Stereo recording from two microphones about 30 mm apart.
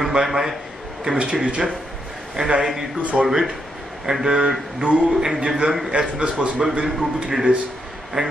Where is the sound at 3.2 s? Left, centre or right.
Centre.